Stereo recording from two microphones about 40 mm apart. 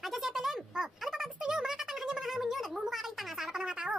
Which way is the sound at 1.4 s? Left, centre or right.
Centre.